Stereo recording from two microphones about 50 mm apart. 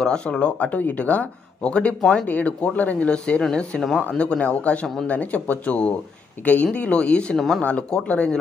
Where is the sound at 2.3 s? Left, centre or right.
Left.